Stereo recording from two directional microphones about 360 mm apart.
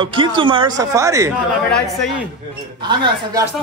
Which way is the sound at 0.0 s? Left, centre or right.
Centre.